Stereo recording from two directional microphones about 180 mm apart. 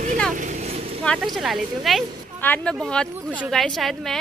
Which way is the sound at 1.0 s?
5° left (ahead or behind).